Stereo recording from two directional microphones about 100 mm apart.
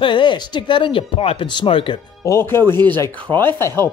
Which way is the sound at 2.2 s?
25° left (ahead or behind).